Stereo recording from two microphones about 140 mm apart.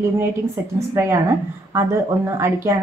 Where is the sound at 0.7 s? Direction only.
20° right (ahead or behind).